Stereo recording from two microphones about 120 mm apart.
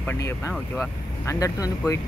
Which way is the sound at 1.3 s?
25° left (ahead or behind).